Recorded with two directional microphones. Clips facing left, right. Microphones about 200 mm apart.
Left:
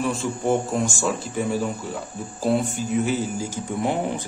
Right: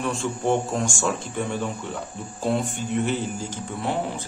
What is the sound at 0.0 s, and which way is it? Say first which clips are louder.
Speech: left 1 dB; centre (ahead or behind).